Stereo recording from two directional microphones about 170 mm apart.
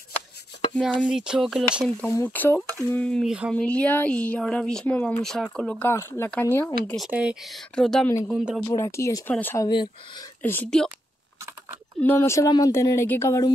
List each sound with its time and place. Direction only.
0.7 s speech: 5° right (ahead or behind)
2.0 s speech: 15° left (ahead or behind); by 3.5 s 5° right (ahead or behind)
3.5 s speech: 5° left (ahead or behind)
7.1 s speech: 5° right (ahead or behind)
8.6 s speech: 15° left (ahead or behind)
12.0 s speech: 10° left (ahead or behind)